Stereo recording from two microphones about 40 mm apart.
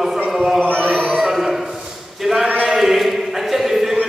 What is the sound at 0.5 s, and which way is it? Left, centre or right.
Chant, left.